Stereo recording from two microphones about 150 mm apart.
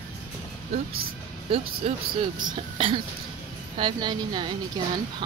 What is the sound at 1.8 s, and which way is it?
Speech, 45° right (ahead or behind).